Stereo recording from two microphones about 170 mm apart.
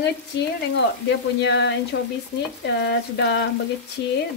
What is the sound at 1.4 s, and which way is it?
Speech, 90° left.